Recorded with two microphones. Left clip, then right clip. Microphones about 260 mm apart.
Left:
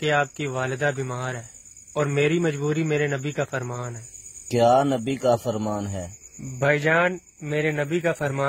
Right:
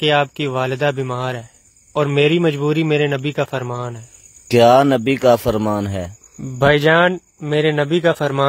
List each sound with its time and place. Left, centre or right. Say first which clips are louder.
0.0 s a man's voice: right 7 dB; right
6.6 s a man's voice: right 8 dB; right